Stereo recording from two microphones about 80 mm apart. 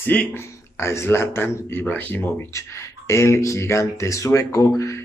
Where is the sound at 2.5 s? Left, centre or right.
Left.